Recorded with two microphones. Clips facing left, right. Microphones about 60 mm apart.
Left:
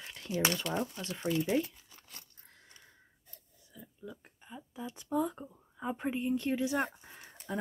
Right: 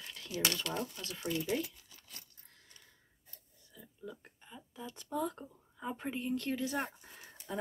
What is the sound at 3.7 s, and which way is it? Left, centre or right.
Speech, centre.